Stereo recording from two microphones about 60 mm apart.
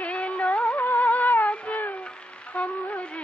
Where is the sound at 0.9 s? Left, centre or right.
Centre.